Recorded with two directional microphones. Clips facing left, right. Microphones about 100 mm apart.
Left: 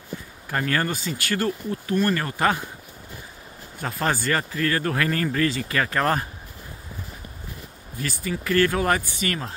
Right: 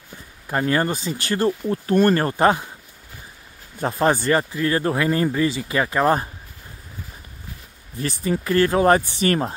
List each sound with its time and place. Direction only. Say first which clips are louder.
0.5 s speech: right 4 dB; 20° right (ahead or behind)
1.7 s speech: right 7 dB; 40° right (ahead or behind)
3.8 s speech: right 6 dB; 25° right (ahead or behind)
8.0 s speech: right 5 dB; 30° right (ahead or behind)